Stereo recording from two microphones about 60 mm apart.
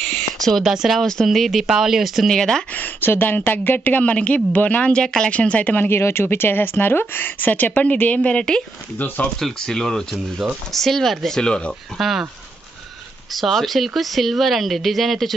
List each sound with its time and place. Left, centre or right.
0.5 s speech: centre
2.3 s speech: centre
2.7 s a sound: left
3.1 s speech: left
4.9 s speech: centre
5.9 s speech: left; by 8.6 s centre
8.9 s speech: left
9.4 s speech: centre
10.1 s speech: centre
10.7 s speech: centre
12.0 s speech: centre
13.3 s speech: centre